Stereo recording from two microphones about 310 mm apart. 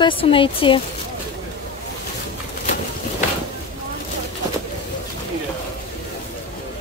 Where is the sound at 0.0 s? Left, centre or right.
Centre.